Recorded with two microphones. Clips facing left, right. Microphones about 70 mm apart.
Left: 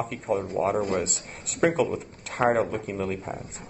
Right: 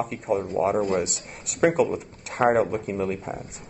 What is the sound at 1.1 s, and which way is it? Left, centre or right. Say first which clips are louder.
Speech: even; right.